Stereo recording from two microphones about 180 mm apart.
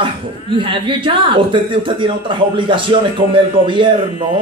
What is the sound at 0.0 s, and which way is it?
Speech, 30° right (ahead or behind).